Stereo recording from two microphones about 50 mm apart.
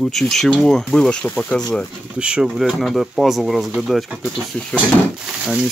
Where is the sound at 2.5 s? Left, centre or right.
Centre.